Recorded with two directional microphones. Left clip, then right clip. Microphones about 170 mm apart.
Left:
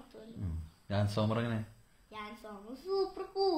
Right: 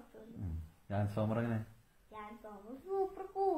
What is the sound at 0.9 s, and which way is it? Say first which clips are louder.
A child's voice: left 3 dB; 10° left (ahead or behind).